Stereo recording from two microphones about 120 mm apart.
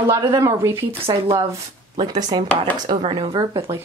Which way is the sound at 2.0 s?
35° right (ahead or behind).